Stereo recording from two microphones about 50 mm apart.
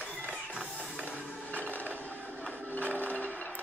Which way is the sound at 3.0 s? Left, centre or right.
Left.